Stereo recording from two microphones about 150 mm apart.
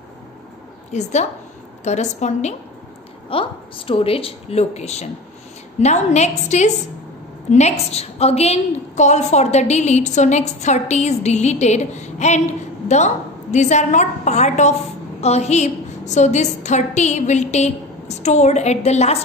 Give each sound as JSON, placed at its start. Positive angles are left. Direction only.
{"t": 0.9, "sound": "a woman's voice", "side_deg": 50}
{"t": 3.3, "sound": "a woman's voice", "side_deg": 35}